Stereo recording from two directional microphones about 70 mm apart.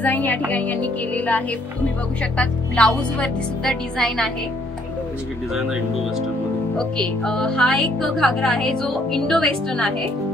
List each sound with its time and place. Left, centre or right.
0.0 s music: left
2.3 s speech: centre
6.8 s speech: centre